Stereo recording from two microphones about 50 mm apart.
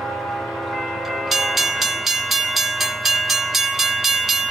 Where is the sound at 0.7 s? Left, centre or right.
Centre.